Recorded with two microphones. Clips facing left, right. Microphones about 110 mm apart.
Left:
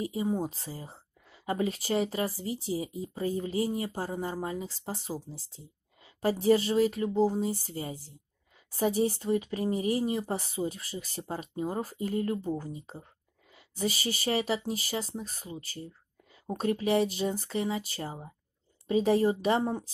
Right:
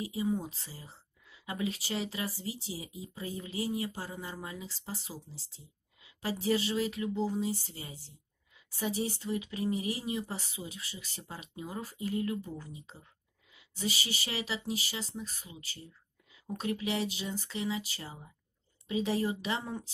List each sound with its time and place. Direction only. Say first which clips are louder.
0.1 s speech: left 3 dB; 40° left (ahead or behind)
5.9 s a sound: left 8 dB; 45° left (ahead or behind)
6.4 s speech: left 6 dB; 40° left (ahead or behind)